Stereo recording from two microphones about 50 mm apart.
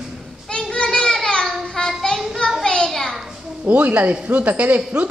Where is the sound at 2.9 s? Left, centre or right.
Centre.